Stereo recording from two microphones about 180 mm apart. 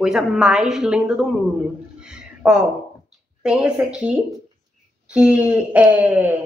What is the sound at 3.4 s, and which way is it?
A woman's voice, 5° right (ahead or behind).